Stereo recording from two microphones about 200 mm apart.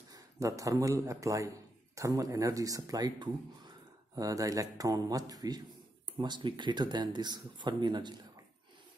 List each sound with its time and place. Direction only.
0.1 s a man's voice: 15° right (ahead or behind)